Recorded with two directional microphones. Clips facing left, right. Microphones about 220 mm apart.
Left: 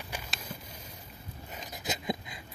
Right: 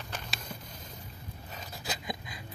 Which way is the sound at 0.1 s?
5° left (ahead or behind).